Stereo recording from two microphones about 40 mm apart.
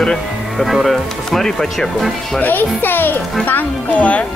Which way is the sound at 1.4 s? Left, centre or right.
Centre.